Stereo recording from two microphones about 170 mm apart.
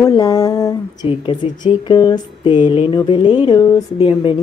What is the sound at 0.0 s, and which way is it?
Speech, 20° left (ahead or behind).